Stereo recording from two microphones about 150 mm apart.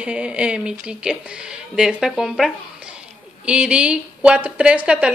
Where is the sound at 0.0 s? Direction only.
5° right (ahead or behind).